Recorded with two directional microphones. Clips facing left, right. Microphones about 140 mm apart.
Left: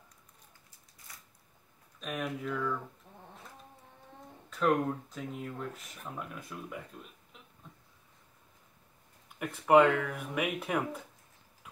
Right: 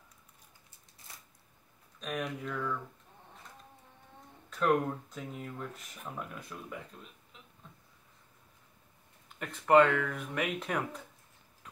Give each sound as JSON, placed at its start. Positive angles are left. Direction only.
{"t": 1.1, "sound": "a sound", "side_deg": -25}
{"t": 2.0, "sound": "speech", "side_deg": 0}
{"t": 4.5, "sound": "speech", "side_deg": 0}
{"t": 9.4, "sound": "speech", "side_deg": 10}